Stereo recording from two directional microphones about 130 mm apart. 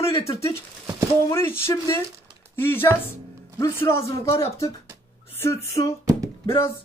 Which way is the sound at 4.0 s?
50° left (ahead or behind).